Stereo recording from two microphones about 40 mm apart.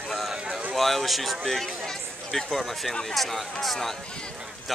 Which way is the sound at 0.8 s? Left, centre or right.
Centre.